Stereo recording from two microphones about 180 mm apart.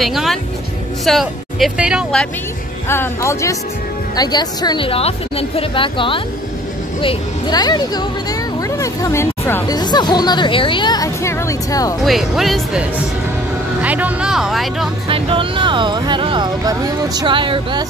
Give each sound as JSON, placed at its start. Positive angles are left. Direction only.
{"t": 0.0, "sound": "speech", "side_deg": 0}
{"t": 2.9, "sound": "speech", "side_deg": 15}
{"t": 12.0, "sound": "speech", "side_deg": 0}
{"t": 15.0, "sound": "speech", "side_deg": -30}